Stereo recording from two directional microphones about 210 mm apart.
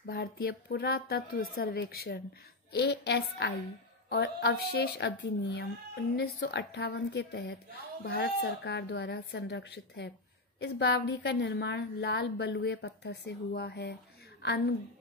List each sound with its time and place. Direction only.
0.0 s a woman's voice: 45° left (ahead or behind)